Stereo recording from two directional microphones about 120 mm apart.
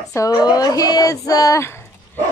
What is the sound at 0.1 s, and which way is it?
A woman's voice, 30° left (ahead or behind).